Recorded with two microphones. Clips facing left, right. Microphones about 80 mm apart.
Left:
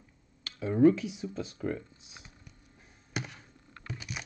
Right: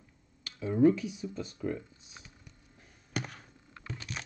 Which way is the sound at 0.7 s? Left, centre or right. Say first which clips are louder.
Left 2 dB; left.